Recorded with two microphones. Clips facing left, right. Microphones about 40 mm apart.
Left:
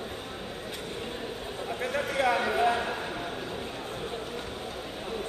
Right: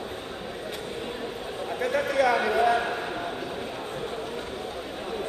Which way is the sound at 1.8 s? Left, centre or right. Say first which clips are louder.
Right 5 dB; right.